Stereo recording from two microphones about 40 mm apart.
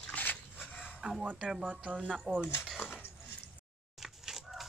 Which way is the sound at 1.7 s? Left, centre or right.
Right.